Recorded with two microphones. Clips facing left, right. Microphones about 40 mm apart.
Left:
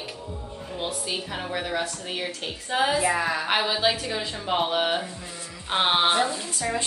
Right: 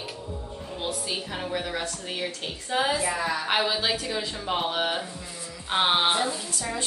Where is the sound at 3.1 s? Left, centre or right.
Left.